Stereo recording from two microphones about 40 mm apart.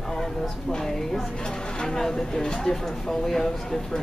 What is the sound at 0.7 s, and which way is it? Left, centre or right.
Speech, centre.